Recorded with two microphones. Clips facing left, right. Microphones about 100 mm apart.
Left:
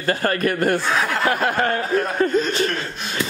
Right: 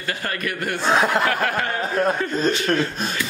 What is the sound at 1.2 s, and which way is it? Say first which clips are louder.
Speech: left 1 dB; 20° left (ahead or behind).